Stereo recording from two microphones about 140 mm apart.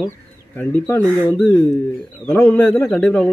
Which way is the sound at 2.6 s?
5° left (ahead or behind).